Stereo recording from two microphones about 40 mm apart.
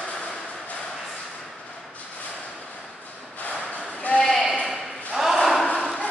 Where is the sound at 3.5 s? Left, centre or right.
Left.